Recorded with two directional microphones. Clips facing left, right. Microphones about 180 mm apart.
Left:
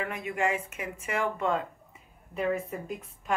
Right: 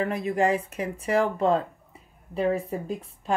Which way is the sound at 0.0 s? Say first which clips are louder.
Right 6 dB; 35° right (ahead or behind).